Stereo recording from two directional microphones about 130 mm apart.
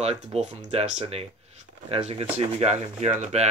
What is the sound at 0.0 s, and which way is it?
Speech, 55° right (ahead or behind).